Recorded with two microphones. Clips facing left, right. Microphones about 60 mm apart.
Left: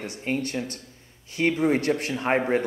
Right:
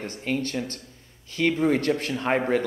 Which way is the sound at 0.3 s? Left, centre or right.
Left.